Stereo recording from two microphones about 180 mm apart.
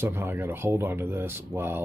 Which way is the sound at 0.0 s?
10° right (ahead or behind).